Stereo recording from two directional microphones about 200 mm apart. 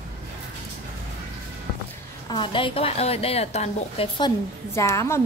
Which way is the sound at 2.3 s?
25° left (ahead or behind).